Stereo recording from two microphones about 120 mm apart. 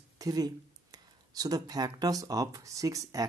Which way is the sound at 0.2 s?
30° right (ahead or behind).